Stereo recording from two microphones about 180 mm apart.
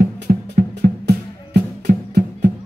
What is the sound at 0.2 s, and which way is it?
Music, 60° right (ahead or behind).